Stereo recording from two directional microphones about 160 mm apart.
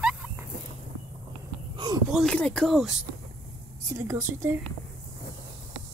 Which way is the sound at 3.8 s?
15° right (ahead or behind).